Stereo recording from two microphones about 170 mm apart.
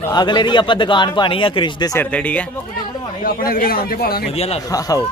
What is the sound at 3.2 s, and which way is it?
A man's voice, 60° left (ahead or behind).